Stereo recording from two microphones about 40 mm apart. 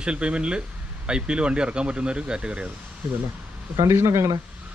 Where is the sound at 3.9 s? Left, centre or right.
Right.